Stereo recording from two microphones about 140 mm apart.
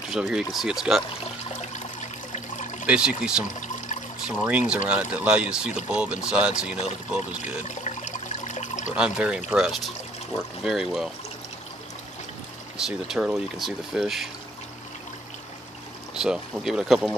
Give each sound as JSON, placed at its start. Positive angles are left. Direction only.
{"t": 0.1, "sound": "speech", "side_deg": -5}
{"t": 1.2, "sound": "water", "side_deg": 55}
{"t": 2.9, "sound": "speech", "side_deg": -5}
{"t": 6.8, "sound": "pour", "side_deg": 50}
{"t": 8.9, "sound": "speech", "side_deg": -5}
{"t": 12.7, "sound": "speech", "side_deg": -5}
{"t": 16.2, "sound": "speech", "side_deg": -5}